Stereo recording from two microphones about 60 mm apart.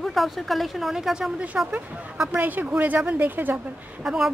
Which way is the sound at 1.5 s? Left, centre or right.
Right.